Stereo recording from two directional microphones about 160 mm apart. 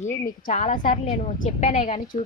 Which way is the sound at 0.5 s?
50° left (ahead or behind).